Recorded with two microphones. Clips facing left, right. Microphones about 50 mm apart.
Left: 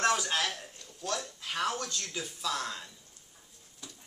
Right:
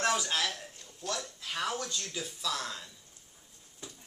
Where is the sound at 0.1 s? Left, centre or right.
Centre.